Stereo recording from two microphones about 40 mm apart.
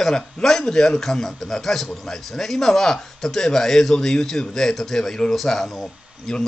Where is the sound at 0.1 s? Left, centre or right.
Centre.